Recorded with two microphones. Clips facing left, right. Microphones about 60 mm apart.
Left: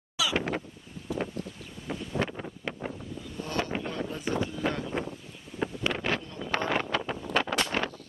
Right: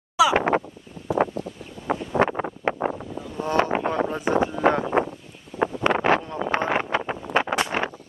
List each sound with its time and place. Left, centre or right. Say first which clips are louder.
0.4 s a sound: right 10 dB; right
1.1 s wind: right 11 dB; right
2.0 s wind noise: right 10 dB; right
3.6 s a sound: right 10 dB; right
5.6 s wind: right 9 dB; right
6.6 s wind noise: right 5 dB; right